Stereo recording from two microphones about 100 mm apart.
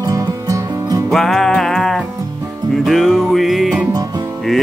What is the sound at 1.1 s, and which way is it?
Music, 5° left (ahead or behind).